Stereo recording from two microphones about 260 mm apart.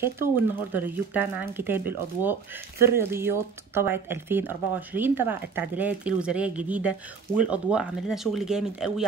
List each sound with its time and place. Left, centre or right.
0.7 s speech: centre